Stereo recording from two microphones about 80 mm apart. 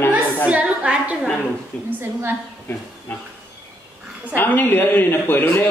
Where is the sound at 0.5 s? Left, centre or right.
Centre.